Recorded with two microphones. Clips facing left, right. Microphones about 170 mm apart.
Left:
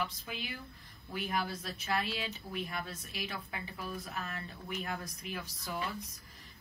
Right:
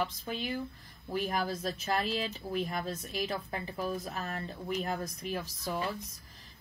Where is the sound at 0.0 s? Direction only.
40° right (ahead or behind).